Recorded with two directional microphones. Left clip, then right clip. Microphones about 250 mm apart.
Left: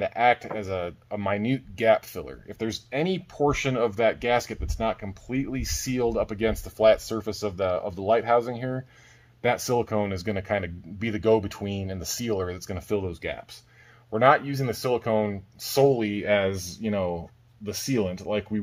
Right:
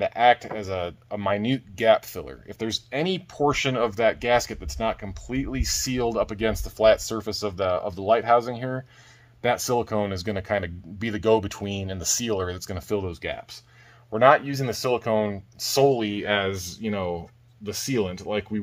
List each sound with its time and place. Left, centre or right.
0.0 s speech: right